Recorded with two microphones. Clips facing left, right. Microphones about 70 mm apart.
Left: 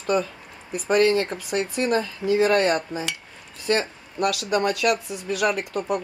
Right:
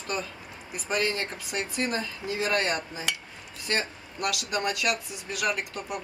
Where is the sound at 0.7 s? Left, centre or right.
Left.